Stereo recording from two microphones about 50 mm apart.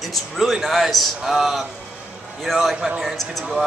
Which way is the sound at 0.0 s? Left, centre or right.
Centre.